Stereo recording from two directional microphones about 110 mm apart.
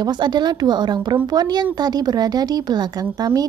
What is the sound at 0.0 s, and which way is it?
A woman's voice, 40° right (ahead or behind).